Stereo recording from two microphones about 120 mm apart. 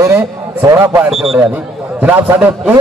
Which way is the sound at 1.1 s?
5° right (ahead or behind).